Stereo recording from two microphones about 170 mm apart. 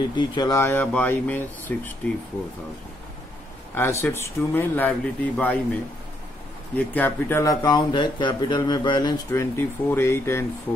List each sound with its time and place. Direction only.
0.1 s speech: 25° left (ahead or behind); by 2.0 s 10° left (ahead or behind)
3.7 s speech: 15° left (ahead or behind)
7.6 s speech: 25° left (ahead or behind)
9.4 s speech: 15° left (ahead or behind)